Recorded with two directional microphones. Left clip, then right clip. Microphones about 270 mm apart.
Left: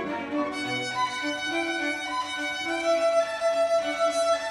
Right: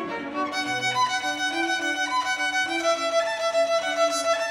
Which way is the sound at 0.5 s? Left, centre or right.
Right.